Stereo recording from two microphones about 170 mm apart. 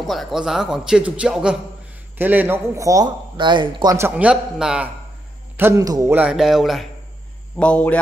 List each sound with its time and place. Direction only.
0.0 s a man's voice: centre (ahead or behind); by 3.9 s 30° right (ahead or behind)
3.9 s a man's voice: 10° right (ahead or behind)
5.6 s a man's voice: 15° right (ahead or behind); by 8.0 s 5° left (ahead or behind)